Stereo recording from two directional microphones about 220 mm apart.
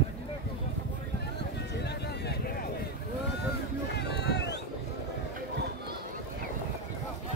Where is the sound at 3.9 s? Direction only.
50° left (ahead or behind).